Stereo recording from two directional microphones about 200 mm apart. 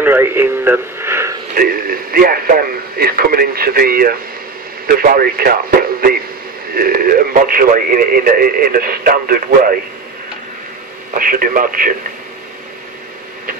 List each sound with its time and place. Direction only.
0.0 s radio: 10° right (ahead or behind)
1.5 s speech: 45° right (ahead or behind)
11.1 s speech: 45° right (ahead or behind)